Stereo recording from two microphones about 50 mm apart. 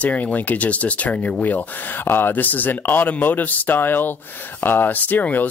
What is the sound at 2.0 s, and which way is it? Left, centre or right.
Speech, left.